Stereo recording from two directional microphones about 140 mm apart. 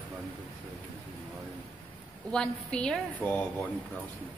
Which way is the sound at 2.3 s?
5° left (ahead or behind).